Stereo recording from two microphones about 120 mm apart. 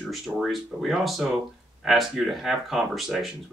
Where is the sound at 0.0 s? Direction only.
Centre (ahead or behind).